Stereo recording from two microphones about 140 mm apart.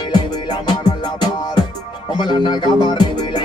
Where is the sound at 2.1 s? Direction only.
35° left (ahead or behind).